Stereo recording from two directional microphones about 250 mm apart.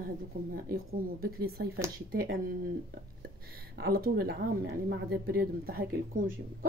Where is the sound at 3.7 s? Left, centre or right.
Right.